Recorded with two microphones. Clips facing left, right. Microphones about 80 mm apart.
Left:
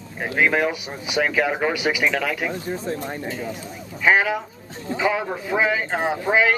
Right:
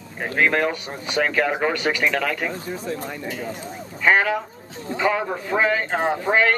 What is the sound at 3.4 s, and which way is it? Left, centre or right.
Speech, right.